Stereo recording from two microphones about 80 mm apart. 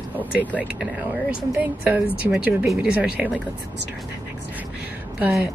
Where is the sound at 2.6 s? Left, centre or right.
Centre.